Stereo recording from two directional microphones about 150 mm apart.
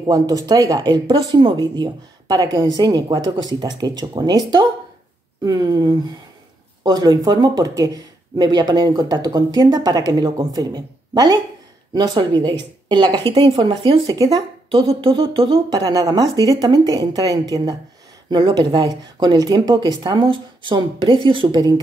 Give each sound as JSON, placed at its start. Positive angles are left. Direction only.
{"t": 0.0, "sound": "speech", "side_deg": -25}
{"t": 14.7, "sound": "a sound", "side_deg": -40}
{"t": 15.7, "sound": "speech", "side_deg": -25}